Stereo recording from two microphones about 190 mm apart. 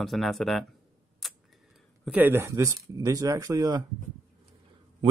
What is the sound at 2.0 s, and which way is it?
Speech, 10° right (ahead or behind).